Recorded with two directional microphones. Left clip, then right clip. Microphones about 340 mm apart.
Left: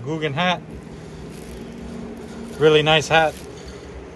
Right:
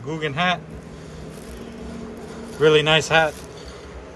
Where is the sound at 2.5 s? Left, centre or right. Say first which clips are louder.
Left 1 dB; centre.